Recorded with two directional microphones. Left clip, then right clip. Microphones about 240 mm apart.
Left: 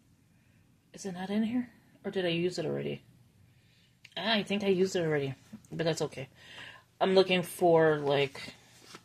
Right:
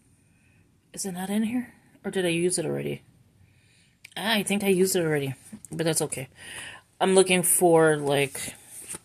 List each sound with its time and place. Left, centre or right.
0.9 s speech: right
4.0 s speech: right